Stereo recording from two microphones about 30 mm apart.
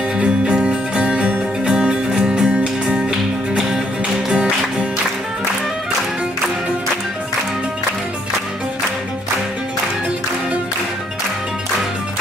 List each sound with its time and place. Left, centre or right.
0.2 s music: right